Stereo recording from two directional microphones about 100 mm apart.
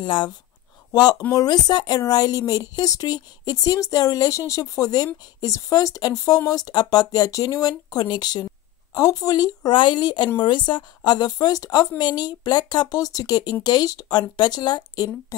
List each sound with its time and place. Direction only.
0.0 s speech: 50° left (ahead or behind)
1.3 s a woman's voice: 40° left (ahead or behind)